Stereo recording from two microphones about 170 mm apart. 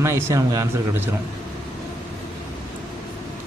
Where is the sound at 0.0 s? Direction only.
15° right (ahead or behind).